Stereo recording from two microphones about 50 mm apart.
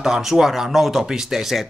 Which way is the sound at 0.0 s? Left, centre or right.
Centre.